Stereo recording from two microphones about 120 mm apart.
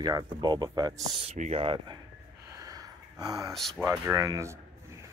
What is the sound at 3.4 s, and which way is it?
Speech, centre (ahead or behind).